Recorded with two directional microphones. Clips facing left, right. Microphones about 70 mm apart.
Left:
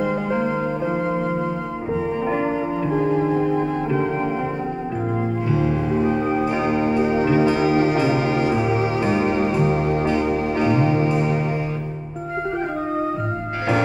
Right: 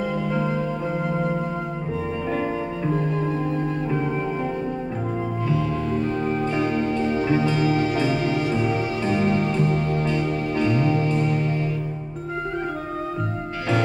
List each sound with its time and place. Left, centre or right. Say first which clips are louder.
2.2 s music: left 2 dB; left
5.5 s music: left 3 dB; centre